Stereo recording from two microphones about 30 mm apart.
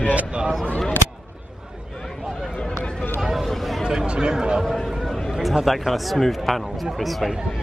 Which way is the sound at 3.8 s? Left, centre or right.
Right.